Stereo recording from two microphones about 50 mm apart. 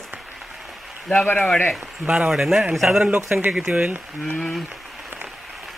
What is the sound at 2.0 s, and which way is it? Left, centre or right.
Speech, centre.